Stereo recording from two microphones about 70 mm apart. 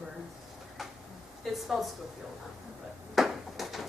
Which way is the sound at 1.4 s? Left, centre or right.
Centre.